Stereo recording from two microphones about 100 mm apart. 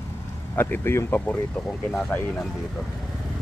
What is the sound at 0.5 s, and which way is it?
Speech, 20° left (ahead or behind).